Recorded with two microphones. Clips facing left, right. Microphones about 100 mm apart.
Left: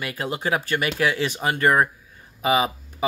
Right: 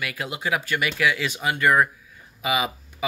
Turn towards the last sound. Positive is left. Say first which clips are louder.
# left 4 dB
turn(degrees=40)  # may be behind; listen again after turning